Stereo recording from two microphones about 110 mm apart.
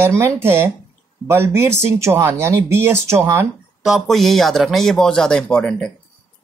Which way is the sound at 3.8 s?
Centre (ahead or behind).